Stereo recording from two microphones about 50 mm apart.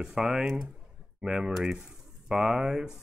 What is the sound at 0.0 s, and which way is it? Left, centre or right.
Speech, centre.